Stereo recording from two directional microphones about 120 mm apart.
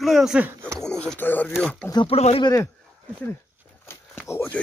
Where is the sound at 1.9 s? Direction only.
50° left (ahead or behind).